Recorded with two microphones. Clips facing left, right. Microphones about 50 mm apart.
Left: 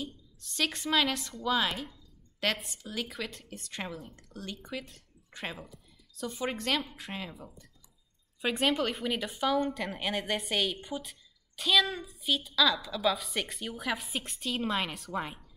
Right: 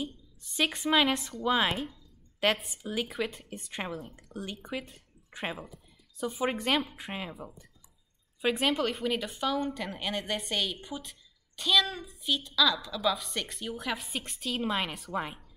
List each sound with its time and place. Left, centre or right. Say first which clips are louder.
0.0 s a woman's voice: right 3 dB; centre
1.4 s speech: right 2 dB; right
2.4 s speech: right 4 dB; centre
8.4 s a woman's voice: right 1 dB; centre